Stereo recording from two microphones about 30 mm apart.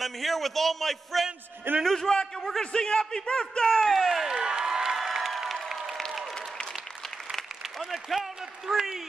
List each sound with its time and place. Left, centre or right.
0.0 s a man's voice: centre
2.0 s a man's voice: left
3.6 s a man's voice: centre
4.5 s crowd: right
4.9 s crowd: centre
5.5 s applause: centre
7.8 s a man's voice: centre